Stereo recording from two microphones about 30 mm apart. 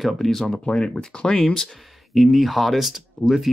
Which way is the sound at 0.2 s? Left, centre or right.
Centre.